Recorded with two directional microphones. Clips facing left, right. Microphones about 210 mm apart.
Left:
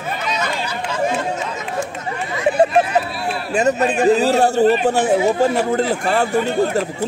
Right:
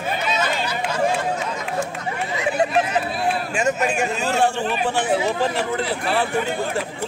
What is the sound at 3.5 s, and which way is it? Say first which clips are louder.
Speech: left 7 dB; 35° left (ahead or behind).